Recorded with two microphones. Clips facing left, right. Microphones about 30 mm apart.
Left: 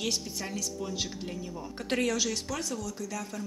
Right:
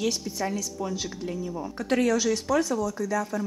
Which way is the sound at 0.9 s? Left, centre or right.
Centre.